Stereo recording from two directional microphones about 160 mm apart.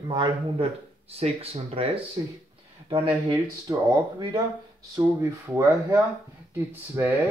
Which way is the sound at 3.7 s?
20° right (ahead or behind).